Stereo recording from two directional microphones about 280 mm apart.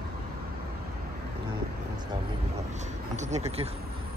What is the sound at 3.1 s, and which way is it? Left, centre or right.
Speech, right.